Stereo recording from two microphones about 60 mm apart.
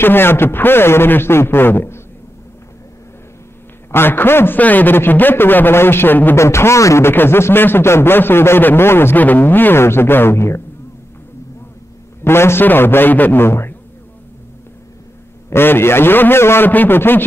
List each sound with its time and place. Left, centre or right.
0.0 s a man's voice: left
3.9 s a man's voice: left
6.3 s a man's voice: left
7.1 s a man's voice: left
12.3 s a man's voice: left
15.5 s a man's voice: left